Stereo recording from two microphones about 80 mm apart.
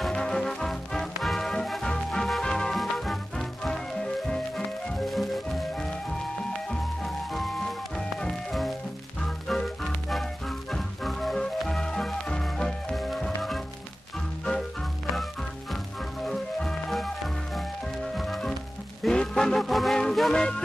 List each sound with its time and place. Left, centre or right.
0.1 s music: centre
16.3 s music: centre
18.1 s music: centre